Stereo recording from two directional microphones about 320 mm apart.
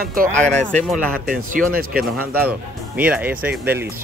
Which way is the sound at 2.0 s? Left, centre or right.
Centre.